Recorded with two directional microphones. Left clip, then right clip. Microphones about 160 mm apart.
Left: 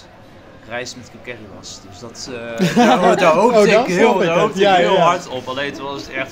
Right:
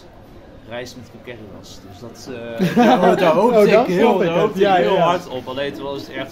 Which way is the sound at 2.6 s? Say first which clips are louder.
Left 1 dB; 20° left (ahead or behind).